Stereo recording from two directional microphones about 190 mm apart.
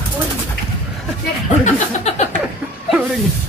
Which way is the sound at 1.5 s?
35° left (ahead or behind).